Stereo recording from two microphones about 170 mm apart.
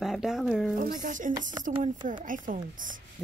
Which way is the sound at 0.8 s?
50° right (ahead or behind).